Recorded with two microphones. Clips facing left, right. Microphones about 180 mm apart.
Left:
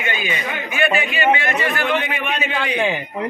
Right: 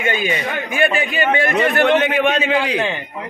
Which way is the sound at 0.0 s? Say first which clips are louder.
Right 4 dB; 45° right (ahead or behind).